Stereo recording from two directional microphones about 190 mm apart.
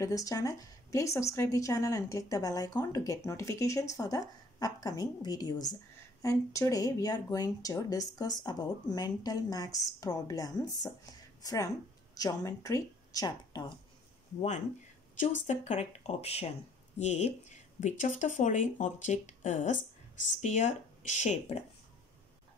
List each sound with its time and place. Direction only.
0.0 s a woman's voice: 20° left (ahead or behind)
15.1 s speech: 40° left (ahead or behind)